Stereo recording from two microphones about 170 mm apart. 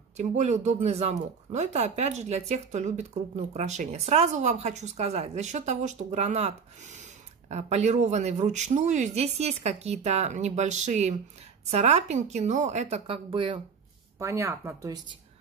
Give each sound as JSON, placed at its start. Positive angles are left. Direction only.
{"t": 0.2, "sound": "a woman's voice", "side_deg": -45}
{"t": 14.1, "sound": "speech", "side_deg": -15}